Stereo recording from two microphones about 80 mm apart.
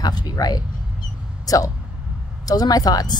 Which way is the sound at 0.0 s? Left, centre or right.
Left.